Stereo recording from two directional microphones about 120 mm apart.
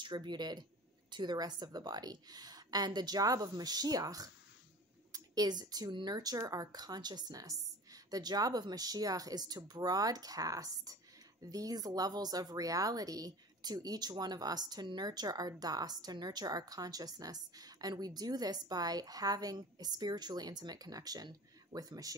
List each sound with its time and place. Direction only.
0.0 s a woman's voice: 40° right (ahead or behind)